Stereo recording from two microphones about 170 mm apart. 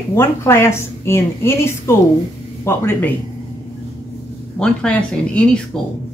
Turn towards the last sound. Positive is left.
turn(degrees=5)  # may be behind; listen again after turning